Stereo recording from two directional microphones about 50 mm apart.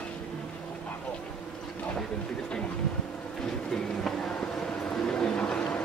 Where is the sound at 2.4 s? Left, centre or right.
Left.